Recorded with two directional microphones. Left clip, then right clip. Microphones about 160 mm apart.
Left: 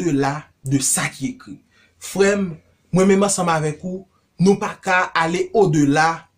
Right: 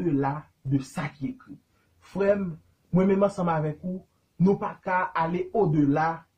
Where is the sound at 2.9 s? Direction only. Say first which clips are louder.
Left 7 dB; 10° left (ahead or behind).